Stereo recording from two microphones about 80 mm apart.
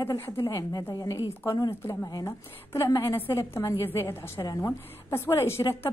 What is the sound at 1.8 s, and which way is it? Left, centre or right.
A woman's voice, left.